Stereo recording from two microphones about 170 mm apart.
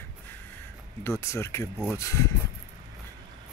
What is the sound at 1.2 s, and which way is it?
Speech, 15° left (ahead or behind).